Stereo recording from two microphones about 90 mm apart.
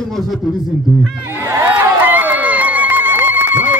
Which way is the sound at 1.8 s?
20° right (ahead or behind).